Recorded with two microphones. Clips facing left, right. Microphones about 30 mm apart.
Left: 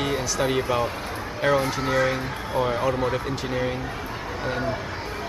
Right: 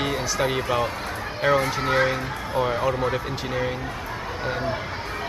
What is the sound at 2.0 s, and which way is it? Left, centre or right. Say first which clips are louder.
Speech: even; centre.